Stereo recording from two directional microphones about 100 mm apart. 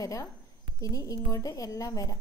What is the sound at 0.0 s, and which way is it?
A woman's voice, 35° left (ahead or behind).